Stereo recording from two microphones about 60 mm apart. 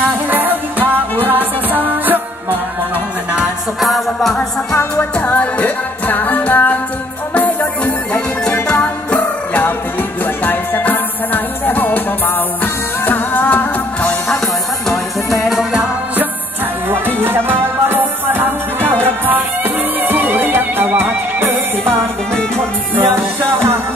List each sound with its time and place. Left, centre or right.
0.3 s music: right
3.8 s music: centre
5.2 s music: left
16.9 s music: right
21.8 s music: centre
23.0 s music: right